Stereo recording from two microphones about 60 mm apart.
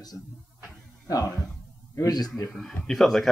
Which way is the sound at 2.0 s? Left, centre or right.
Left.